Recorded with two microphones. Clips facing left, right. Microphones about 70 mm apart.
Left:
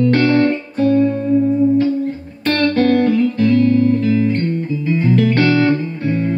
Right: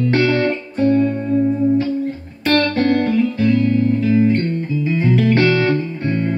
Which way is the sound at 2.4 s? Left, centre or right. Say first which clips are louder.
Left 1 dB; centre.